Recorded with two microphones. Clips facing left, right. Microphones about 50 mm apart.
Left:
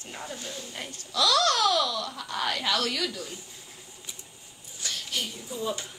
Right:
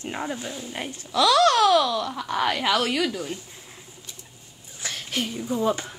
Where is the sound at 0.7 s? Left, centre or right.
Right.